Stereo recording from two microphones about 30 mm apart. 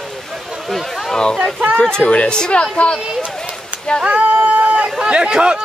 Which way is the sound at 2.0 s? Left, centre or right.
Left.